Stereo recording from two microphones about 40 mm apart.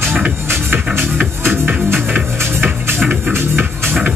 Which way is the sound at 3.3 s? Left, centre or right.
Right.